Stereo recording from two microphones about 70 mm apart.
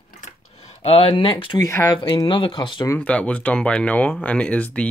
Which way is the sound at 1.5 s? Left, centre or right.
Left.